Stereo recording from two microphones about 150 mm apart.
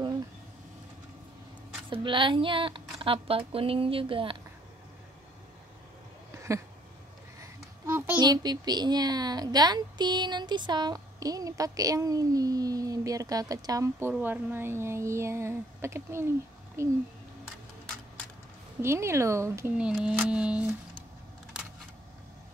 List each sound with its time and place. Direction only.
1.9 s speech: 35° right (ahead or behind)
7.3 s a child's voice: 20° right (ahead or behind)
18.8 s speech: 15° right (ahead or behind)
19.8 s speech: 5° right (ahead or behind)